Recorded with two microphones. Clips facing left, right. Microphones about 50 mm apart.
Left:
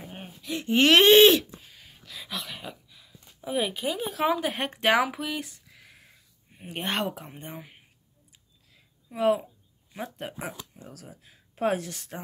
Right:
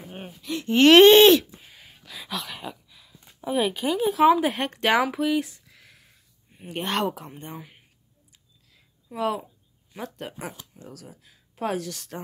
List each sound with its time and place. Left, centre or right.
0.1 s a sound: centre
0.8 s speech: centre
1.6 s a sound: right
2.1 s a sound: centre
3.4 s speech: centre
4.6 s speech: centre
4.9 s speech: centre
9.1 s speech: centre
11.2 s speech: left